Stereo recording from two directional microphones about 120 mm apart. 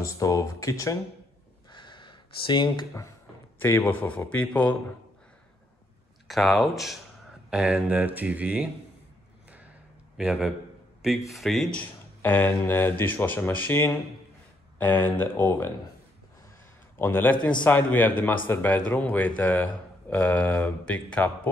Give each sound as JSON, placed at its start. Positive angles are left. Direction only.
{"t": 0.0, "sound": "speech", "side_deg": 30}
{"t": 1.7, "sound": "a sound", "side_deg": 40}
{"t": 3.5, "sound": "speech", "side_deg": 20}
{"t": 6.2, "sound": "speech", "side_deg": 0}
{"t": 10.1, "sound": "speech", "side_deg": -5}
{"t": 12.2, "sound": "speech", "side_deg": 15}
{"t": 17.0, "sound": "speech", "side_deg": 15}